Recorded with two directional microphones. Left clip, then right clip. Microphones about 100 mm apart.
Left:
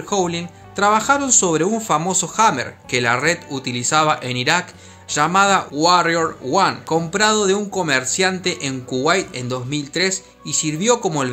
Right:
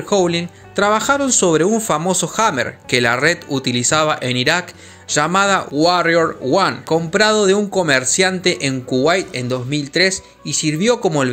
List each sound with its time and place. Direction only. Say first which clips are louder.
0.1 s speech: right 5 dB; 45° right (ahead or behind)
5.8 s speech: right 3 dB; 35° right (ahead or behind)